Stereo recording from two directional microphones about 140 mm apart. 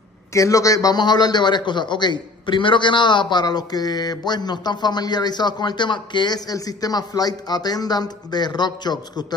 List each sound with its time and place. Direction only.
0.3 s a man's voice: 25° left (ahead or behind)